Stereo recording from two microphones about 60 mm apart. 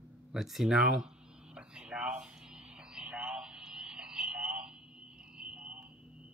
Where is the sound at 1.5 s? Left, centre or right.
Centre.